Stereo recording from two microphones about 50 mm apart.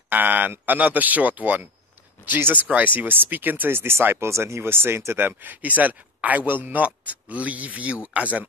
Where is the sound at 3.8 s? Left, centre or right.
Right.